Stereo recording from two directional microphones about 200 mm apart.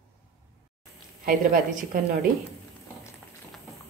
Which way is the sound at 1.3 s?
45° right (ahead or behind).